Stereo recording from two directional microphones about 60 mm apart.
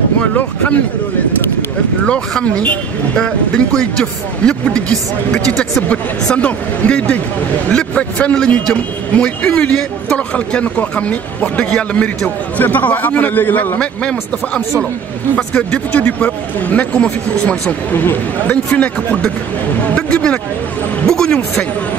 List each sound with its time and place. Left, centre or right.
0.2 s speech: left
2.0 s speech: centre
13.7 s speech: centre